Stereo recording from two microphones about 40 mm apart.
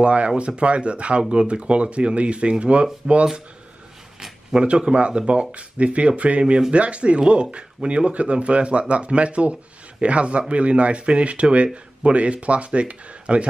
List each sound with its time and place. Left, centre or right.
0.0 s speech: right
4.6 s speech: right